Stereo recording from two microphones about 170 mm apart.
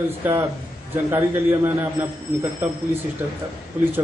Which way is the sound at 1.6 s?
15° right (ahead or behind).